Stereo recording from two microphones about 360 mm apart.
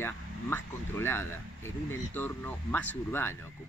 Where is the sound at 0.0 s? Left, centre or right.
Centre.